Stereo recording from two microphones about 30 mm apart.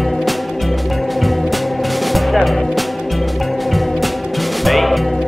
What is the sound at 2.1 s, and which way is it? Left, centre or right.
Music, centre.